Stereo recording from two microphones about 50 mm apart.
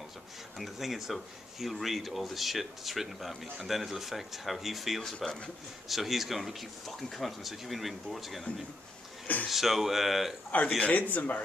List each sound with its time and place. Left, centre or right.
0.6 s speech: centre
10.5 s speech: left